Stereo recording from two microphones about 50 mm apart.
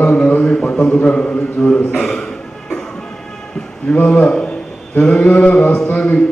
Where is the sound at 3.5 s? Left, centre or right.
Left.